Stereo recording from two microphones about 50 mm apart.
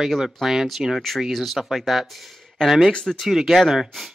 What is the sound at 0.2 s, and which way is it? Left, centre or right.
Speech, centre.